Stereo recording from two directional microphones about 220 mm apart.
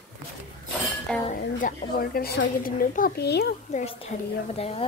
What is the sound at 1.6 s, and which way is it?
A child's voice, 40° left (ahead or behind).